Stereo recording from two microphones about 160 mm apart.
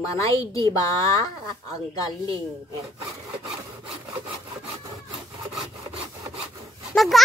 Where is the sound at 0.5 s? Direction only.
20° left (ahead or behind).